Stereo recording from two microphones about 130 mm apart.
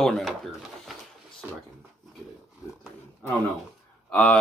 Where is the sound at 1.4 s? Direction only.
10° right (ahead or behind).